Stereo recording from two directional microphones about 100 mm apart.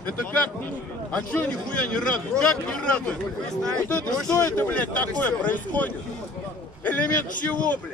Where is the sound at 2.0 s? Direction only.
10° left (ahead or behind).